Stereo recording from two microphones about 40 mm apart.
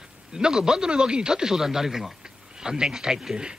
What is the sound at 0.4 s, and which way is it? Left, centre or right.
Speech, centre.